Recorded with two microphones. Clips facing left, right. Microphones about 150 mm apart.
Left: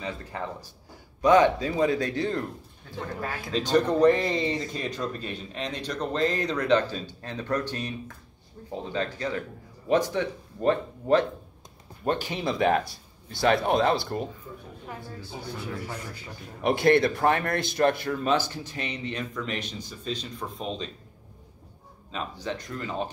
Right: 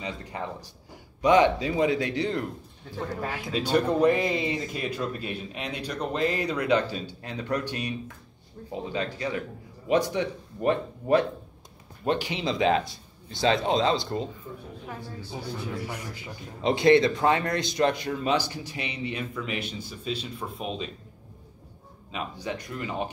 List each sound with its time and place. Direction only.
0.0 s speech: 15° right (ahead or behind)
12.2 s speech: 50° left (ahead or behind)
12.5 s speech: 20° right (ahead or behind)
13.7 s speech: 60° left (ahead or behind)
15.2 s a man's voice: 15° right (ahead or behind)
22.1 s speech: 15° right (ahead or behind)